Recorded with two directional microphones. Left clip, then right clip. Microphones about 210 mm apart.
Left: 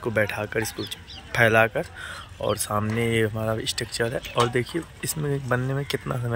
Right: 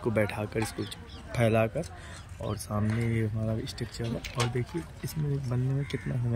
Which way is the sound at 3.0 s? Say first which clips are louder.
Left 10 dB; centre (ahead or behind).